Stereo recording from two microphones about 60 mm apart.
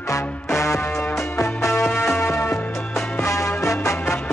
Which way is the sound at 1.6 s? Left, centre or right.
Left.